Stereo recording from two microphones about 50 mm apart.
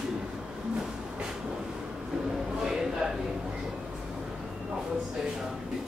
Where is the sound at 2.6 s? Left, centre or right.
Centre.